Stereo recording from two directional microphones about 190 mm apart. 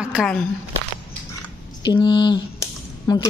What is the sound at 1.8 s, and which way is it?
Squish, 25° left (ahead or behind).